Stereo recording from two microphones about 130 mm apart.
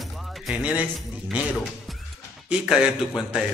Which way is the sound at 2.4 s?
5° right (ahead or behind).